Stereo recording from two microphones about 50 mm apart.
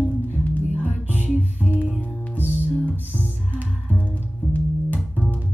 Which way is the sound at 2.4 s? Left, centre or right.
Left.